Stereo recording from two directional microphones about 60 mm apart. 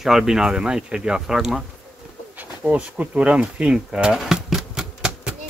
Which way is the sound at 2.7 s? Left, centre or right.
Right.